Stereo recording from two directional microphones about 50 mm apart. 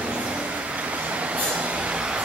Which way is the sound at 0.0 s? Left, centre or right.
Right.